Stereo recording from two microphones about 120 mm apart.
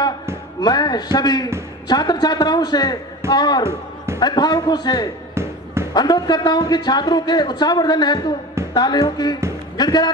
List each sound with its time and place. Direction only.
0.6 s a man's voice: 35° left (ahead or behind)
3.6 s a sound: 20° right (ahead or behind)
4.2 s a man's voice: 35° left (ahead or behind)
5.3 s basketball bounce: 20° right (ahead or behind)
5.9 s a man's voice: 35° left (ahead or behind)